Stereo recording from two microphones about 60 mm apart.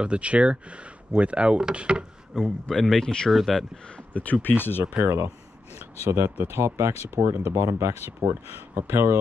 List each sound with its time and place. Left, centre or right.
0.0 s speech: centre
2.3 s speech: centre
3.3 s speech: centre
3.5 s speech: centre; by 4.8 s left
5.0 s speech: right